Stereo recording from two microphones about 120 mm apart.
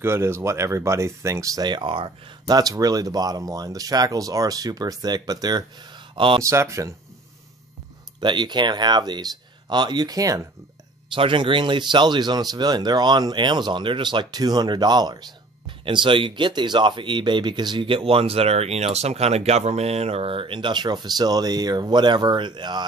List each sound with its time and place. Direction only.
0.0 s speech: 20° right (ahead or behind); by 2.1 s 45° right (ahead or behind)
2.4 s speech: 30° right (ahead or behind)
6.1 s speech: 45° right (ahead or behind)
6.4 s speech: 25° right (ahead or behind)
8.2 s speech: 40° right (ahead or behind)
11.1 s speech: 45° right (ahead or behind)